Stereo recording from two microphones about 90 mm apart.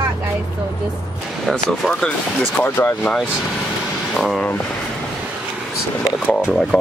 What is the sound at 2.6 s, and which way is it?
Speech, 20° left (ahead or behind).